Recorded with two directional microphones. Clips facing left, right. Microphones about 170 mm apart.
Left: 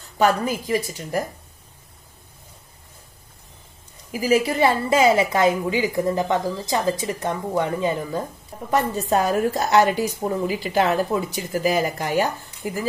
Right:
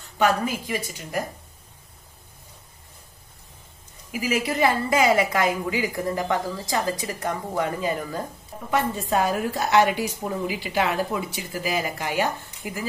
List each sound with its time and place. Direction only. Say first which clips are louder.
0.2 s a woman's voice: left 2 dB; 35° left (ahead or behind)
4.1 s a woman's voice: left 5 dB; 35° left (ahead or behind)
8.6 s a woman's voice: left 3 dB; 40° left (ahead or behind)